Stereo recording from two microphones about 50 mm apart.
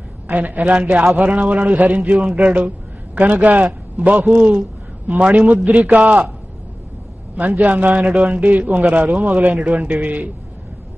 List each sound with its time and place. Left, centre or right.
0.3 s a man's voice: right
7.3 s speech: right